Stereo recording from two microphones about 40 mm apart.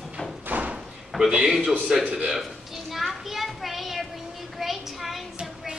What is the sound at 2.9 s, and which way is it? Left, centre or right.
Children playing, centre.